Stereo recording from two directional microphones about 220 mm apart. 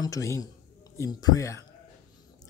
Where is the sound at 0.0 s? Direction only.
15° left (ahead or behind).